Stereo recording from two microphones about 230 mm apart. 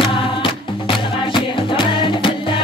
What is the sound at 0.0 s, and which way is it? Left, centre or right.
Music, left.